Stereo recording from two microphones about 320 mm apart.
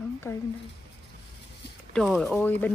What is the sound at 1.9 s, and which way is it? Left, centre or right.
Speech, centre.